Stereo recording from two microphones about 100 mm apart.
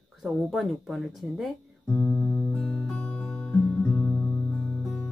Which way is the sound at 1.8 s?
20° left (ahead or behind).